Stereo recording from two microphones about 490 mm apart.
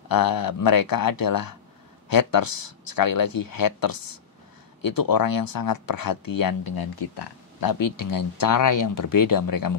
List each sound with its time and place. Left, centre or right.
0.1 s speech: left